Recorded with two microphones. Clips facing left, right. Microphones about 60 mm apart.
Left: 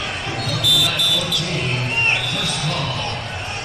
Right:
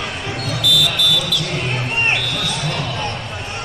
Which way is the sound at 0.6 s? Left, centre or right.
Centre.